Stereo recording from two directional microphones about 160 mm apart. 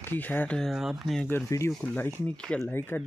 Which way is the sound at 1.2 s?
15° left (ahead or behind).